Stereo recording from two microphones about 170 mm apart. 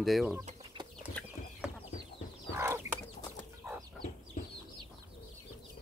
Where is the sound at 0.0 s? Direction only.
Centre (ahead or behind).